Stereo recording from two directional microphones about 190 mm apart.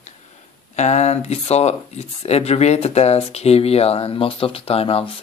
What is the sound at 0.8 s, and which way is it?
Speech, 35° left (ahead or behind).